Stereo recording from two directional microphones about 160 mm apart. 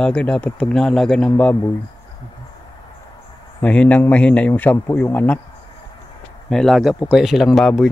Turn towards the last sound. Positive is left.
turn(degrees=0)  # may be behind; listen again after turning